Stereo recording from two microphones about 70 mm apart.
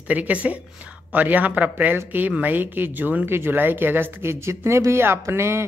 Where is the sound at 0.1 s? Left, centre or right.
Right.